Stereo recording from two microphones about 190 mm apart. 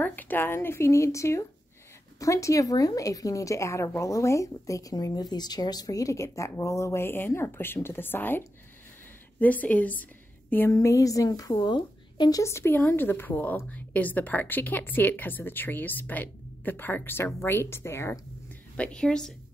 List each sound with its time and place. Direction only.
0.0 s a woman's voice: 10° left (ahead or behind)